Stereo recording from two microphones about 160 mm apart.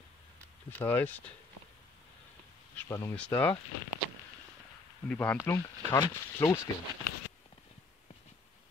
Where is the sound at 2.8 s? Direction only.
15° left (ahead or behind).